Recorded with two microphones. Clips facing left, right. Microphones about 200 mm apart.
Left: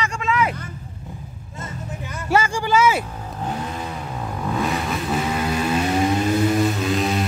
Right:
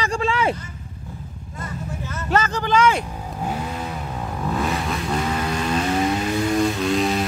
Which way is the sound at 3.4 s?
10° right (ahead or behind).